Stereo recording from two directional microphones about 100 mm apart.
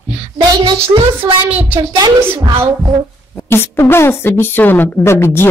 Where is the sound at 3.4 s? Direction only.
25° left (ahead or behind).